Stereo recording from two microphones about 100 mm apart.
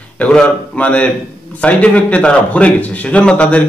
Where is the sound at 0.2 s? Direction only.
10° left (ahead or behind).